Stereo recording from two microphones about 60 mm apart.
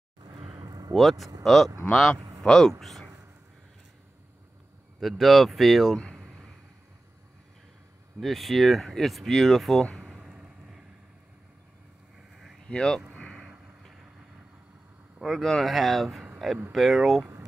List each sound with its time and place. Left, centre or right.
0.6 s a sound: right
0.9 s speech: centre
2.1 s a sound: right
2.4 s speech: centre
5.0 s speech: centre
8.2 s speech: centre
9.9 s a sound: centre
10.2 s vehicle: centre
12.6 s speech: centre
15.1 s speech: centre